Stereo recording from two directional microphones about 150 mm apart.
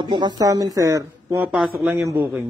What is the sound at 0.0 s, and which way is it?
Speech, 30° right (ahead or behind).